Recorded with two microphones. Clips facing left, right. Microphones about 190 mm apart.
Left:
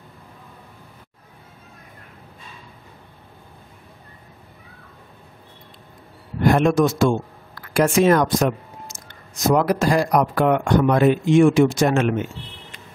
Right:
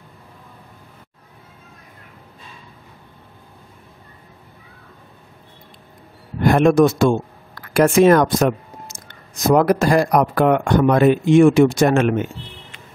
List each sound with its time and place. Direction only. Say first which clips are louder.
6.5 s speech: right 5 dB; 55° right (ahead or behind)